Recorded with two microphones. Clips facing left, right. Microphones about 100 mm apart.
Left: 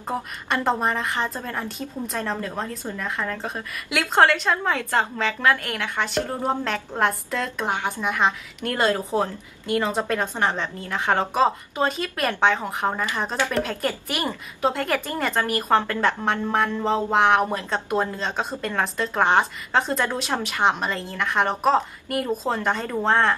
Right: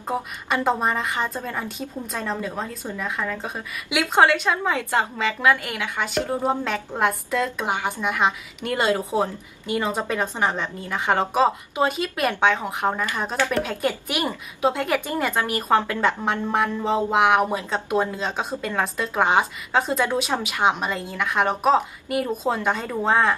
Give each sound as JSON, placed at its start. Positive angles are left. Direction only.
{"t": 0.0, "sound": "a woman's voice", "side_deg": -5}